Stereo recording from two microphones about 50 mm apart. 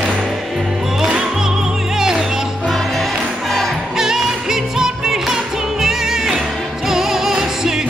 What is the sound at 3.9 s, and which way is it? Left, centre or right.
Music, centre.